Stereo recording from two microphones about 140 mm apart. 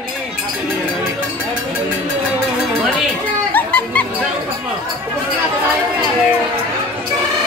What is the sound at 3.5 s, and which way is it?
Music, 10° left (ahead or behind).